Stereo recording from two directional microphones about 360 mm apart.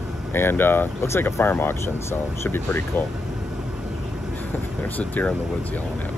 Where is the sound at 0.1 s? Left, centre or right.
Centre.